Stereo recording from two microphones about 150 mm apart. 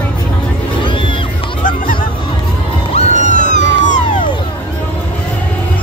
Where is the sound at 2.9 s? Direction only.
55° left (ahead or behind).